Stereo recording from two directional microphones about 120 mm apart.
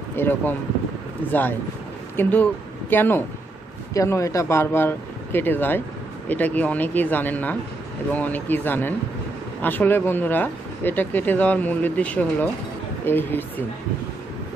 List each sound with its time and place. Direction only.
0.1 s speech: 15° left (ahead or behind)